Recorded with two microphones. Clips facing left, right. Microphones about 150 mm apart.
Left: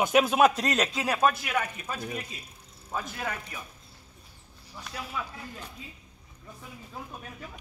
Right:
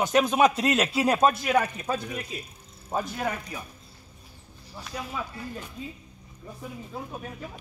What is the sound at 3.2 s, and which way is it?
Speech, 20° right (ahead or behind).